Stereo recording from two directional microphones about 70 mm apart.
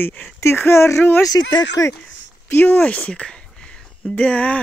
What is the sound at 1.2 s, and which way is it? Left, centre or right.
Speech, left.